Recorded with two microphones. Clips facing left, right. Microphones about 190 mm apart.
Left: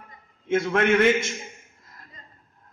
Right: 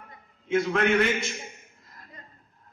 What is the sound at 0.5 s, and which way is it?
Speech, 50° left (ahead or behind).